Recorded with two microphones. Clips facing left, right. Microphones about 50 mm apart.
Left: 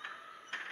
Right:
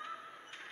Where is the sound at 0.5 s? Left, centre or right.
Left.